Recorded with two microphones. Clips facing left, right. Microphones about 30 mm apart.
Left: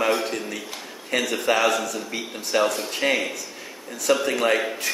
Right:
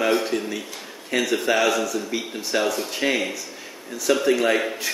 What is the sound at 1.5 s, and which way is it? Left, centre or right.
Speech, left.